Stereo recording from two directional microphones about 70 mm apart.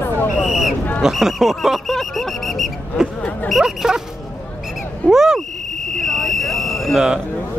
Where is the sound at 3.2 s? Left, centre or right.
Left.